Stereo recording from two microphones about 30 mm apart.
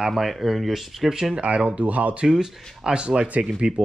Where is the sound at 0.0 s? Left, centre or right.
Centre.